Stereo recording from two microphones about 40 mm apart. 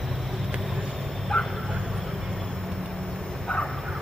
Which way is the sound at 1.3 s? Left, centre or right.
Centre.